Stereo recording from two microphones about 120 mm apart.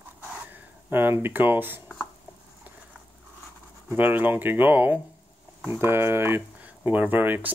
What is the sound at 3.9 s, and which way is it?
Speech, 15° right (ahead or behind).